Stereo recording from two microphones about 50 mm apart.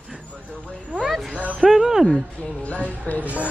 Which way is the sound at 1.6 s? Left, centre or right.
Centre.